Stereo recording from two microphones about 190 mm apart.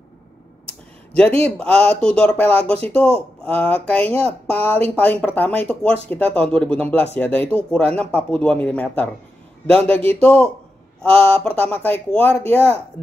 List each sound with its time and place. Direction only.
0.7 s a sound: 5° left (ahead or behind)
1.4 s speech: 5° left (ahead or behind)
2.7 s speech: 30° right (ahead or behind)
3.4 s speech: 10° left (ahead or behind)